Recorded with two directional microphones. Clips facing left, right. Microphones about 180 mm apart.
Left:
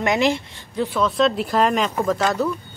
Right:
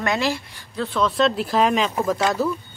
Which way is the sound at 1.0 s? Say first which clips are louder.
Even; centre (ahead or behind).